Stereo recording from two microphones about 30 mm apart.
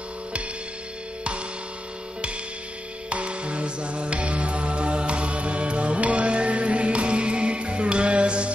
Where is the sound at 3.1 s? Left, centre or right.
Right.